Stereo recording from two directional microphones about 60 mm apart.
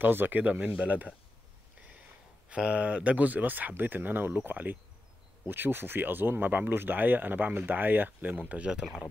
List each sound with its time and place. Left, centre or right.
0.0 s speech: right
0.4 s speech: right
2.5 s speech: centre